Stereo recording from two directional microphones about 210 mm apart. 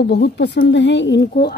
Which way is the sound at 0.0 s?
50° left (ahead or behind).